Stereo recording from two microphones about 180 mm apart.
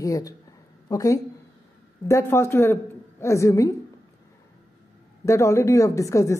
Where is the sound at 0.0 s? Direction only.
20° left (ahead or behind).